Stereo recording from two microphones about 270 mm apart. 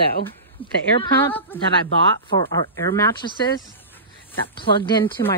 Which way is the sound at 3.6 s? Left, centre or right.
Centre.